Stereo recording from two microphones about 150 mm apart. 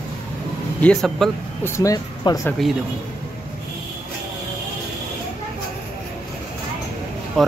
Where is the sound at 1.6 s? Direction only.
20° left (ahead or behind).